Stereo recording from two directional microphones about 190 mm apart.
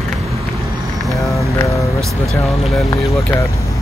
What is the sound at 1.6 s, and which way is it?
Speech, 15° left (ahead or behind).